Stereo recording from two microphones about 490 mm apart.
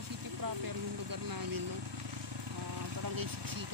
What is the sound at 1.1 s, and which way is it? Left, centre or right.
Speech, right.